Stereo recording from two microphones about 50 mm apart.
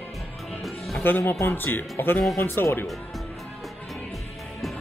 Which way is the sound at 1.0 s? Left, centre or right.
Left.